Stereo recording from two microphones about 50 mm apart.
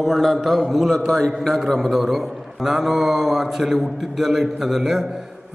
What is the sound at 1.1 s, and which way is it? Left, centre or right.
Speech, centre.